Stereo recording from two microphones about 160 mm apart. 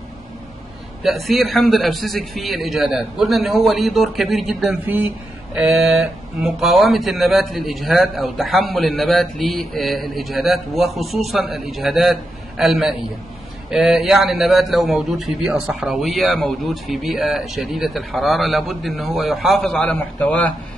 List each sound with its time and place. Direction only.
1.0 s speech: centre (ahead or behind)
4.8 s speech: 10° right (ahead or behind); by 20.4 s 10° left (ahead or behind)